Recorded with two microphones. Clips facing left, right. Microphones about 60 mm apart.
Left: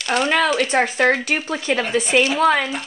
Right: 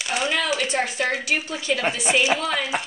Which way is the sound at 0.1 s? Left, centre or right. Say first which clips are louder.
Left 6 dB; left.